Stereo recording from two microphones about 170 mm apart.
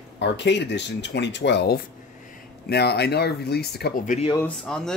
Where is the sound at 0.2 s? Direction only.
90° left.